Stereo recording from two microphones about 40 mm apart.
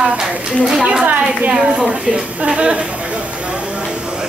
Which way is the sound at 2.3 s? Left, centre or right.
Right.